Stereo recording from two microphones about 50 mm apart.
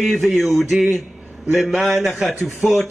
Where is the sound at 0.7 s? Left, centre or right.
Centre.